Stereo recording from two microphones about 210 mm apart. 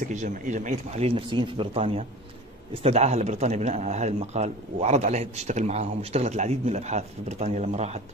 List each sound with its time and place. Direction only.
0.1 s speech: 35° right (ahead or behind)